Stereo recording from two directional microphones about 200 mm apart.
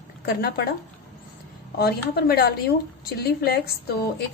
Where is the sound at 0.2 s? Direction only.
50° left (ahead or behind).